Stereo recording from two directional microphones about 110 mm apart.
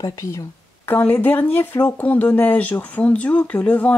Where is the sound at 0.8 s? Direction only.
15° left (ahead or behind).